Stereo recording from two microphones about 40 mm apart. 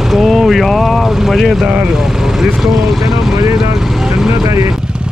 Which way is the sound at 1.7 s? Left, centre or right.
Right.